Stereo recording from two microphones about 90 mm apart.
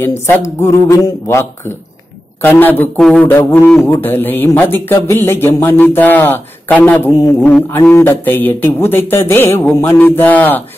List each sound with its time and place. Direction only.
0.0 s a man's voice: 30° left (ahead or behind)
3.0 s speech: 5° left (ahead or behind)
3.3 s speech: 25° left (ahead or behind)